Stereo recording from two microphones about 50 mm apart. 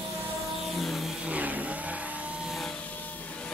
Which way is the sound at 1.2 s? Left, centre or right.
Right.